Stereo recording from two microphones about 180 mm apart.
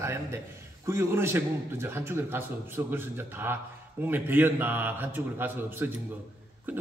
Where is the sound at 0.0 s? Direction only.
15° right (ahead or behind).